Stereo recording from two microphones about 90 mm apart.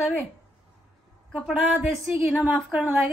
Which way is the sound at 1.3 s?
Centre (ahead or behind).